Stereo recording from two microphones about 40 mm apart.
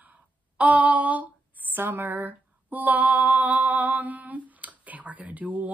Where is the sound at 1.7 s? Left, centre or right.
Right.